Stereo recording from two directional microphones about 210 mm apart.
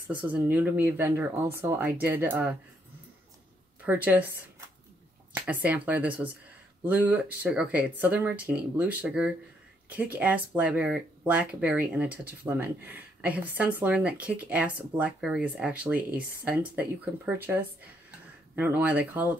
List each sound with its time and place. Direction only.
0.2 s speech: 10° right (ahead or behind)
3.8 s speech: 10° right (ahead or behind)
16.1 s speech: 45° right (ahead or behind)
16.7 s speech: 10° right (ahead or behind)
18.6 s speech: 10° right (ahead or behind)